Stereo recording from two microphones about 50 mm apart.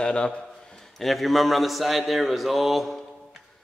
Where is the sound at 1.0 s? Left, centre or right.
Centre.